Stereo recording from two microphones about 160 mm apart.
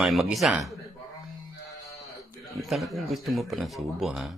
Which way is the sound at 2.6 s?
Centre (ahead or behind).